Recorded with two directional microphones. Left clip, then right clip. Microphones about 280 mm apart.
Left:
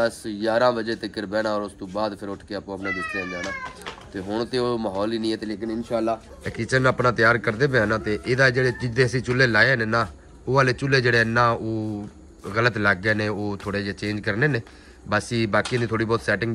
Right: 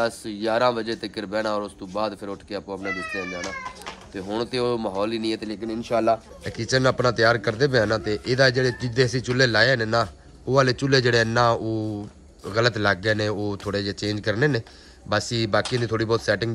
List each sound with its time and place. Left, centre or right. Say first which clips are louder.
0.0 s a man's voice: left 1 dB; centre
5.9 s speech: right 4 dB; right
6.4 s a man's voice: left 2 dB; centre